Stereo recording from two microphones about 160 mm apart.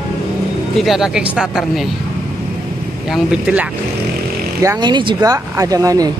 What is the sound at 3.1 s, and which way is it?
Speech, 5° right (ahead or behind).